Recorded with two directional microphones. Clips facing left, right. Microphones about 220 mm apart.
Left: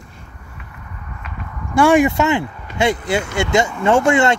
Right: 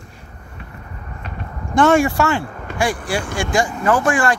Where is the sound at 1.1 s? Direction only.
35° right (ahead or behind).